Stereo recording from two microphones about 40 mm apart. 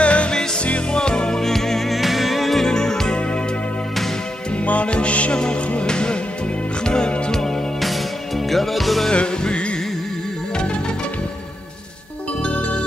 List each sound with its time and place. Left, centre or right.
0.0 s music: left
0.9 s music: left
1.4 s music: centre
2.7 s music: centre
4.6 s music: left; by 7.5 s centre
8.5 s music: centre
9.1 s music: left